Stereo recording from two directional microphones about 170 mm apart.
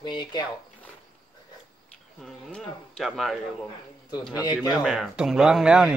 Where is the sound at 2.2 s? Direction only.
5° left (ahead or behind).